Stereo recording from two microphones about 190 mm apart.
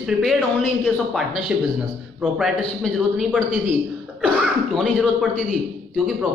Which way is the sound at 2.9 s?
5° right (ahead or behind).